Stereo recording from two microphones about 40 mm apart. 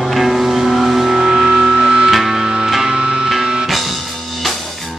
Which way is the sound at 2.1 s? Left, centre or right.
Centre.